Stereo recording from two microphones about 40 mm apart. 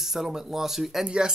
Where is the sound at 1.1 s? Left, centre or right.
Centre.